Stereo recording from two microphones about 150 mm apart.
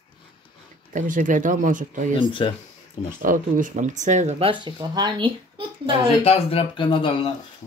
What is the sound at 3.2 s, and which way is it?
Speech, 65° right (ahead or behind).